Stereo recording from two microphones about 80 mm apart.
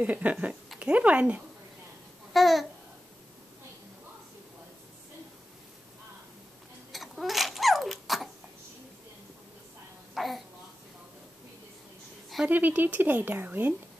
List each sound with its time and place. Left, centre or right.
0.0 s a woman's voice: centre
2.3 s babbling: centre
6.9 s tick-tock: centre
10.1 s babbling: centre
12.4 s a woman's voice: right